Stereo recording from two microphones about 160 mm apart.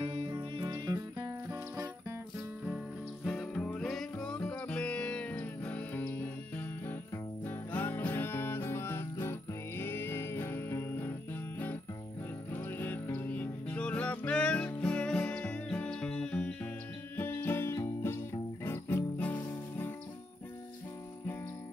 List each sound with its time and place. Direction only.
0.0 s music: 35° right (ahead or behind); by 2.1 s 20° right (ahead or behind)
3.3 s music: centre (ahead or behind)
12.5 s music: 10° left (ahead or behind)